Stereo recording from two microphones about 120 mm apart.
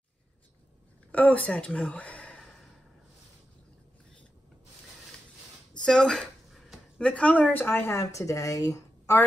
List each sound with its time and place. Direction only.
1.1 s speech: 10° left (ahead or behind)
5.9 s a sound: 5° left (ahead or behind)
7.0 s speech: 10° left (ahead or behind); by 9.2 s 25° left (ahead or behind)